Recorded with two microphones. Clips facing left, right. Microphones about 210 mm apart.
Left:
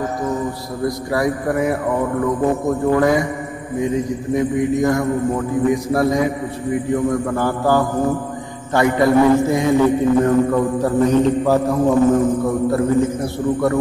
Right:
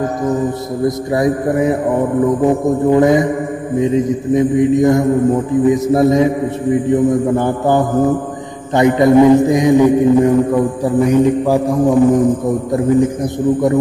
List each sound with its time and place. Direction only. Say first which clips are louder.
0.8 s mantra: right 4 dB; 20° right (ahead or behind)